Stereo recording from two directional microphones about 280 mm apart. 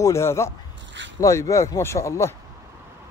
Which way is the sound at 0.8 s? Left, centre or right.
Right.